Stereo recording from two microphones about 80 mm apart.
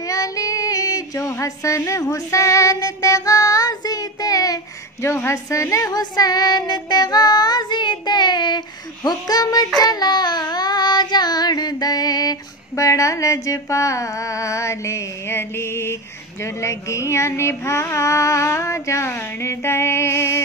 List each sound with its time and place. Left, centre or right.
0.0 s female singing: left
1.3 s child singing: left
5.0 s child singing: left